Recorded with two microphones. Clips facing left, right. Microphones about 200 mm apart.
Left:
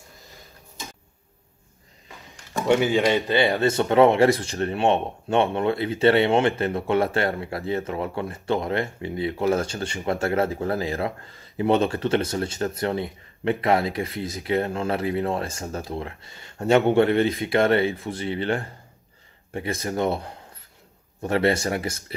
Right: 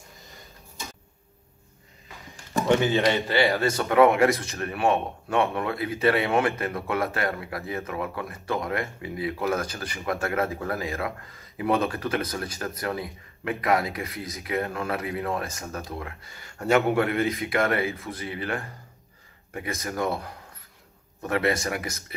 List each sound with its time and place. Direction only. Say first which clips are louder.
2.6 s speech: left 2 dB; 15° left (ahead or behind); by 22.1 s 30° left (ahead or behind)